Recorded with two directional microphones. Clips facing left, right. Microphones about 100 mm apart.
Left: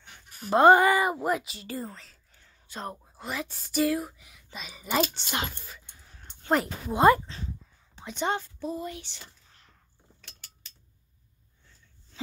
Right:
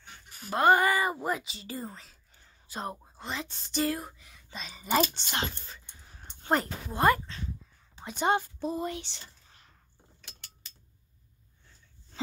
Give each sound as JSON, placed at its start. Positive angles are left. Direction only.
{"t": 0.5, "sound": "a woman's voice", "side_deg": 25}
{"t": 3.2, "sound": "a woman's voice", "side_deg": 10}
{"t": 6.9, "sound": "speech", "side_deg": 20}
{"t": 8.0, "sound": "a woman's voice", "side_deg": -5}
{"t": 8.5, "sound": "a sound", "side_deg": -25}
{"t": 9.1, "sound": "speech", "side_deg": -30}